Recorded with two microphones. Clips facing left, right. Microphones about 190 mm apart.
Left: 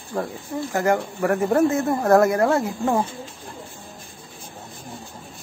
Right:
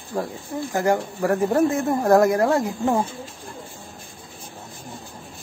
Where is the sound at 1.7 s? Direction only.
15° right (ahead or behind).